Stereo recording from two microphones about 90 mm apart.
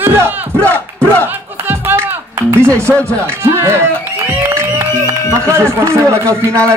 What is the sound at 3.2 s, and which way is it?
A man's voice, 30° right (ahead or behind).